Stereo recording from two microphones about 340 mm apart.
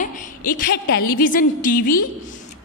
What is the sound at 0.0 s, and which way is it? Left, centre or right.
A woman's voice, left.